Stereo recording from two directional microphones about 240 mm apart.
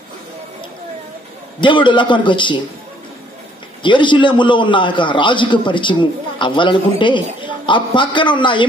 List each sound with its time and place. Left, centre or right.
1.6 s a man's voice: centre
3.8 s a man's voice: centre